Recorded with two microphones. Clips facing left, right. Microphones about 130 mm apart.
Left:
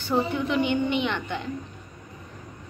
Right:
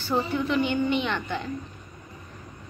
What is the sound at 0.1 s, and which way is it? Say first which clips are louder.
A woman's voice: left 1 dB; 20° left (ahead or behind).